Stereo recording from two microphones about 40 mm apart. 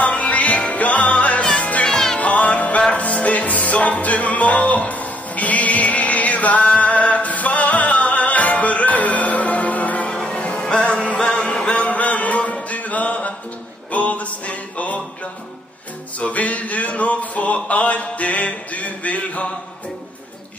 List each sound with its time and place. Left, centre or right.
0.0 s music: left
10.1 s music: centre
10.7 s music: left
12.6 s mantra: left
13.9 s music: left
16.2 s a sound: left